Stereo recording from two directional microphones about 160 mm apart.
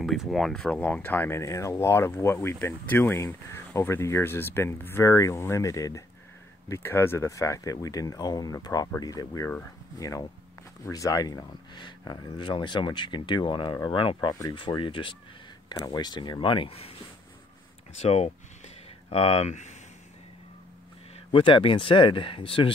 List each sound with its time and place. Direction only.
0.0 s speech: centre (ahead or behind); by 16.9 s 35° left (ahead or behind)
17.9 s speech: 40° left (ahead or behind)
21.3 s speech: 30° left (ahead or behind)